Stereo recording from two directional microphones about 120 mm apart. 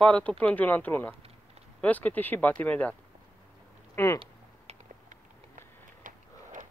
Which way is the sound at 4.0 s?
20° left (ahead or behind).